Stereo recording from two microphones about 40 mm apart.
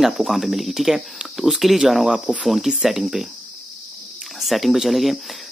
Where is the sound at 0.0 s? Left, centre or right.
Centre.